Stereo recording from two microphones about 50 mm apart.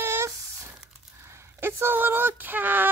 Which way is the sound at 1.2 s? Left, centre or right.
Right.